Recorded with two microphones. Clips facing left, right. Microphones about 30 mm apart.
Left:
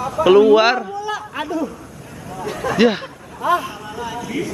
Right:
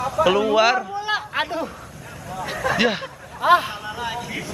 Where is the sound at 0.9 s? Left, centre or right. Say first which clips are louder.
Right 1 dB; right.